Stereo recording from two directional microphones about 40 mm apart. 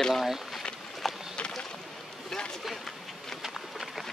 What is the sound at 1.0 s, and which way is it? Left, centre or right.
Rowboat, centre.